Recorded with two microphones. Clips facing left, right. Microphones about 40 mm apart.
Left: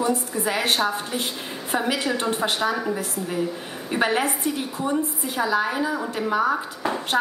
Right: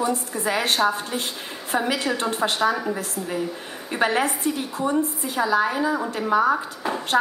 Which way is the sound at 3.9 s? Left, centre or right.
Centre.